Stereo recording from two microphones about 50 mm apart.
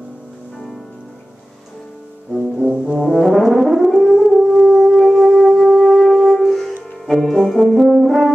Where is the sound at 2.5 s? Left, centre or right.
Right.